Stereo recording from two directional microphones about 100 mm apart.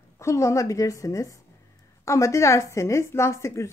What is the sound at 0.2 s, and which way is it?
A woman's voice, 30° left (ahead or behind).